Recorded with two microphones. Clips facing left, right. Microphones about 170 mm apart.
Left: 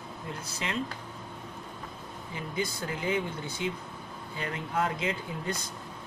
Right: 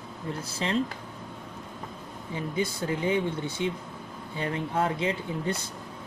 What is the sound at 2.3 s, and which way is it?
Speech, 25° right (ahead or behind).